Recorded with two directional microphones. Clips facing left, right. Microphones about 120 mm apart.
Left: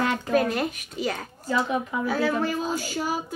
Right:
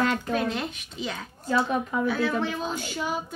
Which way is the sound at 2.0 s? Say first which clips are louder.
Left 3 dB; 40° left (ahead or behind).